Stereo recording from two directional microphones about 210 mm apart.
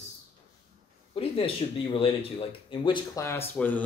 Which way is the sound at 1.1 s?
25° left (ahead or behind).